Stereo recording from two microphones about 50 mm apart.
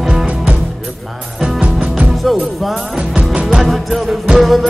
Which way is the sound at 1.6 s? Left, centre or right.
Right.